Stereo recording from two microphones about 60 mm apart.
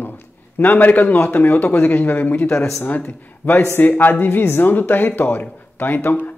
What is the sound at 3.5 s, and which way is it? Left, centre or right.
Speech, left.